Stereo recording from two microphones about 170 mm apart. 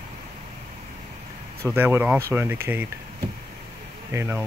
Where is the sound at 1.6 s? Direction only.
10° right (ahead or behind).